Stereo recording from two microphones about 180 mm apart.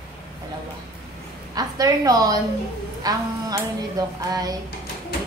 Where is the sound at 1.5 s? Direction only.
20° right (ahead or behind).